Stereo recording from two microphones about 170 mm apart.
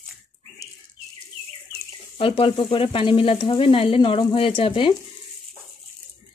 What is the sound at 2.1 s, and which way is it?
Speech, 30° left (ahead or behind).